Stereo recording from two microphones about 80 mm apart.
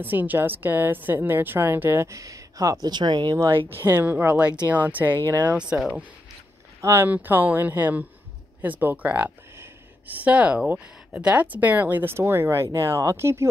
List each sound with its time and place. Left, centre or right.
0.0 s a woman's voice: right
2.0 s speech: right
2.9 s speech: right
3.5 s a woman's voice: right
6.8 s speech: right
7.1 s a woman's voice: right